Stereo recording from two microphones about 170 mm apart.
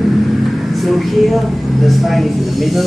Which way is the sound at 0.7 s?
Centre (ahead or behind).